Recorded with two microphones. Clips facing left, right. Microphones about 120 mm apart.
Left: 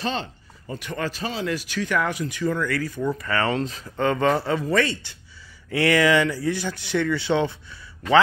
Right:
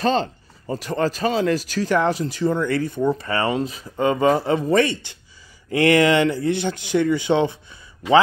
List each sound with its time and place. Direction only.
0.0 s speech: 40° right (ahead or behind); by 5.1 s 20° right (ahead or behind)
5.7 s speech: 50° right (ahead or behind)
6.5 s speech: 20° right (ahead or behind)